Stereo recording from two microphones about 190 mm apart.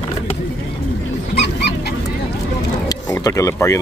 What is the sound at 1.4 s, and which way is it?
Dog, 60° left (ahead or behind).